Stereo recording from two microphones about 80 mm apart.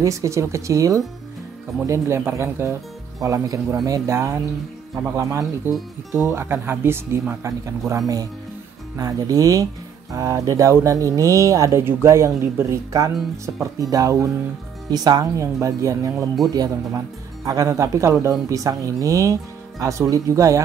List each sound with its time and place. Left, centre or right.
0.0 s speech: right
1.9 s speech: right
3.2 s speech: right
14.9 s speech: right
15.4 s speech: right